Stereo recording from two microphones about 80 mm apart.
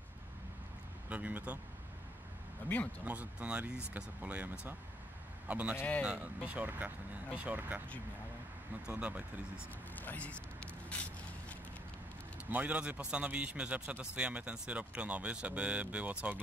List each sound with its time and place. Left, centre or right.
1.0 s speech: centre
3.1 s a man's voice: centre
8.8 s a man's voice: centre
9.9 s a sound: centre
12.4 s a man's voice: centre